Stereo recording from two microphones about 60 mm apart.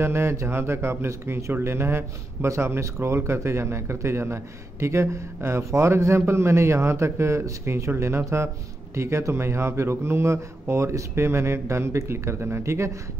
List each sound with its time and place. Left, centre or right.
0.0 s speech: right